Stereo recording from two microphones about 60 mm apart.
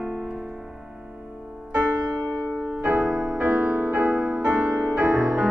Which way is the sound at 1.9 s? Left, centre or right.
Right.